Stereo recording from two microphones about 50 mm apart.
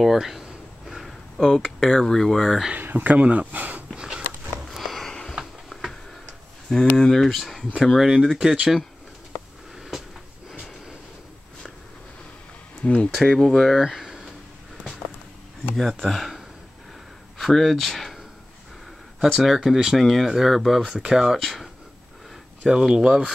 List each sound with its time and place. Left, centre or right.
0.0 s a sound: centre
1.4 s speech: centre
2.8 s speech: right
3.9 s walk: centre
4.6 s sniff: centre
5.4 s tick-tock: centre
7.0 s speech: centre
12.8 s speech: left
13.1 s speech: centre
15.7 s speech: centre
19.3 s speech: centre
20.8 s speech: centre
21.4 s speech: centre
22.7 s speech: centre